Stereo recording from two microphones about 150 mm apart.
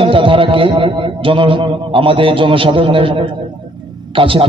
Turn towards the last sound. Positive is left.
turn(degrees=-35)  # may be behind; listen again after turning